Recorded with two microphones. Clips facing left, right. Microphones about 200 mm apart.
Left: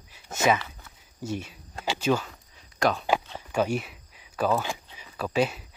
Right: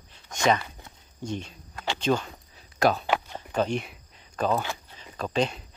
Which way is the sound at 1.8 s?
10° left (ahead or behind).